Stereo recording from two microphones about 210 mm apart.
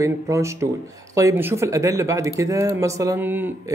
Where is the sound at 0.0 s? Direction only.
15° right (ahead or behind).